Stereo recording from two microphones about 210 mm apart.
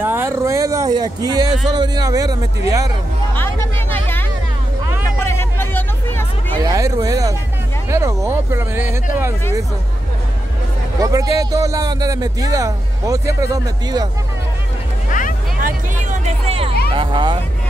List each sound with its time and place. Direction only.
0.0 s speech: 10° right (ahead or behind)
3.3 s music: 10° left (ahead or behind)
5.0 s hubbub: 10° left (ahead or behind)
6.5 s speech: 15° right (ahead or behind)
11.0 s speech: 15° right (ahead or behind)
15.0 s music: 40° left (ahead or behind)
15.6 s hubbub: 30° right (ahead or behind)
16.9 s vehicle: 25° right (ahead or behind)